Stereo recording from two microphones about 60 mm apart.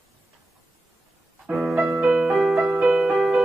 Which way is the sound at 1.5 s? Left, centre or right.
Right.